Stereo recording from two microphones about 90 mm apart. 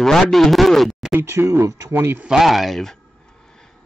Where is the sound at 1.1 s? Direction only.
30° right (ahead or behind).